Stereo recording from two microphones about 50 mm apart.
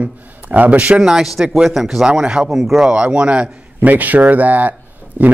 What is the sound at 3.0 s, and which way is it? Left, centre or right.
Speech, right.